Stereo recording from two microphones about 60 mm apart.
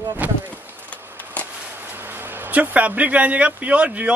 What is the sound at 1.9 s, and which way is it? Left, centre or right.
A man's voice, right.